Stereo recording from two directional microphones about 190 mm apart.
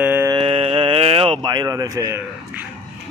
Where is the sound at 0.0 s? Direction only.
10° right (ahead or behind).